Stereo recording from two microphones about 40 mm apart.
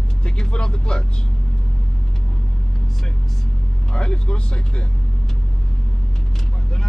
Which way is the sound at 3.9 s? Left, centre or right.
Left.